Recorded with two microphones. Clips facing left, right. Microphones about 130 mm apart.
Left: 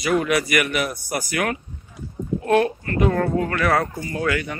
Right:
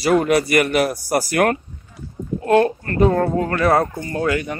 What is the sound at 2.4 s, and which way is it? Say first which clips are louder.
Speech: right 3 dB; 25° right (ahead or behind).